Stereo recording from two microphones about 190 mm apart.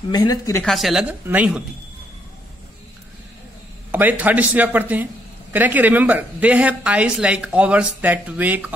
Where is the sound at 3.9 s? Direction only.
10° right (ahead or behind).